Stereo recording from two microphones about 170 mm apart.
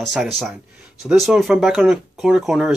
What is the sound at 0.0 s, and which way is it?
Speech, centre (ahead or behind).